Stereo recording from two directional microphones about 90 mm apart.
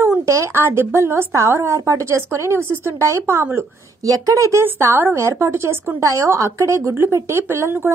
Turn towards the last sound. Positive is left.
turn(degrees=-30)  # may be behind; listen again after turning